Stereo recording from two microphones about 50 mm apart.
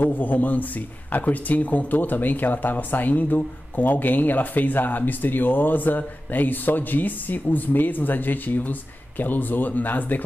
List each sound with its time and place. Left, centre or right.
0.0 s a man's voice: left